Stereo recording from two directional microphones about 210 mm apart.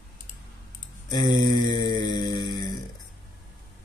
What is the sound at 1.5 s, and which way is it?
Mantra, 20° left (ahead or behind).